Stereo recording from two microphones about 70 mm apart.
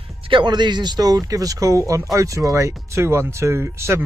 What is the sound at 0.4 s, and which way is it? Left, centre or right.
Speech, right.